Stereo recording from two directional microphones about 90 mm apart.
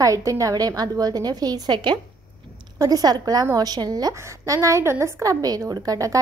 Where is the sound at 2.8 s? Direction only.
45° right (ahead or behind).